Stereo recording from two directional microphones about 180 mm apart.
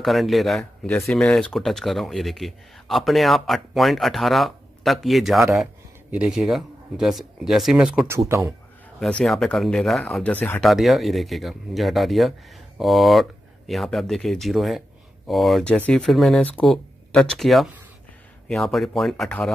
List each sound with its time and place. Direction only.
0.0 s speech: centre (ahead or behind)
8.3 s a man's voice: 15° right (ahead or behind)
9.0 s speech: centre (ahead or behind)